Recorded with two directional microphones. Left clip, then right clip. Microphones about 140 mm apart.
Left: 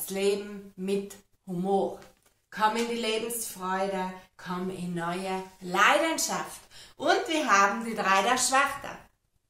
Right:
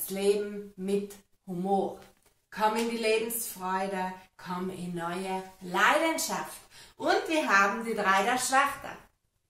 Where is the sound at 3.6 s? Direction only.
25° left (ahead or behind).